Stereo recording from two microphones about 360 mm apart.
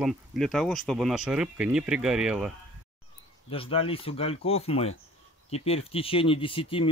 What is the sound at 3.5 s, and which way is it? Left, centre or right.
Speech, centre.